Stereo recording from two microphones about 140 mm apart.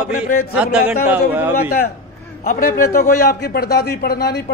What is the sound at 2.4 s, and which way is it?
A man's voice, 90° left.